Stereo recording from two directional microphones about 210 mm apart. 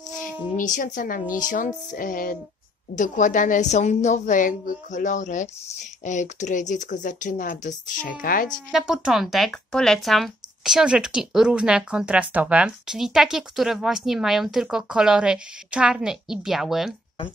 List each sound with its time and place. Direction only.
0.6 s a woman's voice: 40° left (ahead or behind)
8.7 s speech: 5° right (ahead or behind)